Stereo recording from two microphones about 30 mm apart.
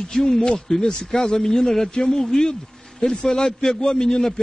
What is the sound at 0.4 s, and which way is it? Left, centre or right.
Speech, left.